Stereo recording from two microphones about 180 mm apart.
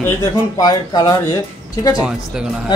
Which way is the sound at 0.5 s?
20° left (ahead or behind).